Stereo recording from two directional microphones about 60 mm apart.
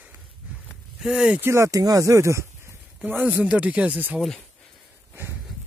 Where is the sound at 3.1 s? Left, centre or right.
Right.